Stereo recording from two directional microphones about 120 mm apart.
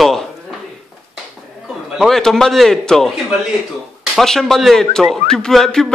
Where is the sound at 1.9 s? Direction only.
Centre (ahead or behind).